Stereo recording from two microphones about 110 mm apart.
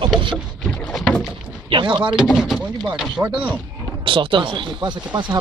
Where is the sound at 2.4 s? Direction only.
5° right (ahead or behind).